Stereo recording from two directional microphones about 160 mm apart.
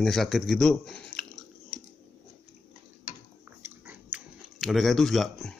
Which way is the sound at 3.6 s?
10° right (ahead or behind).